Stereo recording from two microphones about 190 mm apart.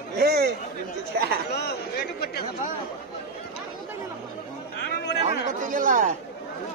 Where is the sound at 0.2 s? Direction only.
55° right (ahead or behind).